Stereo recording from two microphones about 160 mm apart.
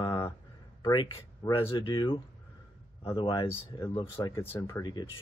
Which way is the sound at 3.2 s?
25° left (ahead or behind).